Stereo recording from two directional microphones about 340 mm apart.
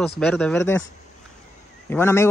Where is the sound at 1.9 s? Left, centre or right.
Centre.